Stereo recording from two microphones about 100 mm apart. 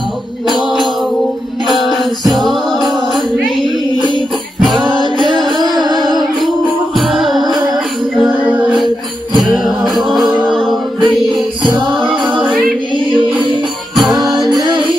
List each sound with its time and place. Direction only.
1.7 s music: centre (ahead or behind)
4.7 s music: 50° right (ahead or behind)
5.7 s music: centre (ahead or behind)
9.4 s music: 5° right (ahead or behind)
12.4 s singing: 5° right (ahead or behind)
12.9 s music: 55° right (ahead or behind)
13.9 s music: centre (ahead or behind)
14.5 s music: 45° right (ahead or behind)